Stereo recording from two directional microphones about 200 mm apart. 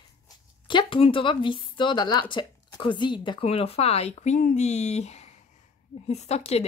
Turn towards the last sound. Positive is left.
turn(degrees=30)  # may be behind; listen again after turning